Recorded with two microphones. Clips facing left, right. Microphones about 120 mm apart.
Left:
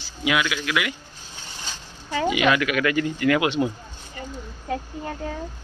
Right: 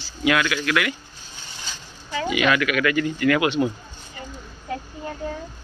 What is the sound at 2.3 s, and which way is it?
Speech, 20° left (ahead or behind).